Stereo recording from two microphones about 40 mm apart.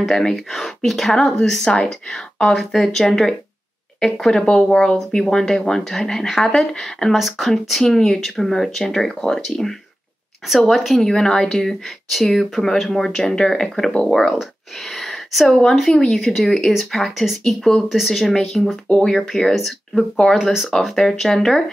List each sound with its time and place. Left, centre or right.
0.1 s speech: centre
7.2 s speech: centre
7.8 s speech: centre
11.1 s speech: centre
15.0 s a sound: centre
16.1 s speech: centre
18.9 s speech: centre
19.1 s speech: centre
20.0 s speech: centre